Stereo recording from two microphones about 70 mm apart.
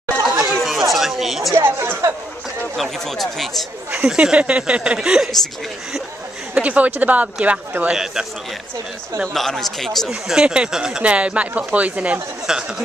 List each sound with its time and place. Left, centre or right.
0.2 s chatter: centre
1.5 s a sound: right
2.8 s speech: centre
3.9 s speech: centre
6.5 s speech: right
9.3 s speech: centre